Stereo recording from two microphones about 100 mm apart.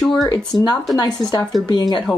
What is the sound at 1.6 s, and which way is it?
Speech, 40° left (ahead or behind).